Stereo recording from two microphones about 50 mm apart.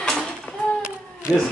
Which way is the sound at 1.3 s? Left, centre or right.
Centre.